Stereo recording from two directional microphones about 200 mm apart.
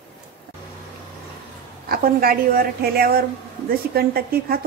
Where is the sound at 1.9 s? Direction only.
50° right (ahead or behind).